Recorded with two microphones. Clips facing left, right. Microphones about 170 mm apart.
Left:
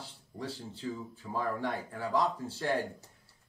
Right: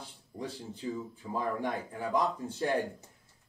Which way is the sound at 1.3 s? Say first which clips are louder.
Right 1 dB; 15° right (ahead or behind).